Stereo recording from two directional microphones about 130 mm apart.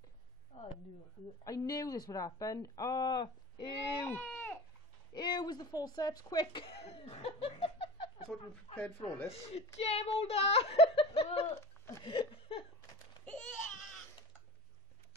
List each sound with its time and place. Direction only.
0.5 s a sound: 55° left (ahead or behind)
1.4 s speech: 25° left (ahead or behind)
4.0 s speech: 15° left (ahead or behind)
5.1 s speech: 35° left (ahead or behind)
6.6 s laughter: 45° left (ahead or behind)
8.7 s speech: 10° left (ahead or behind)
9.3 s speech: 50° left (ahead or behind)
11.5 s speech: 20° left (ahead or behind)
12.0 s speech: 40° left (ahead or behind)
13.2 s a sound: 5° left (ahead or behind)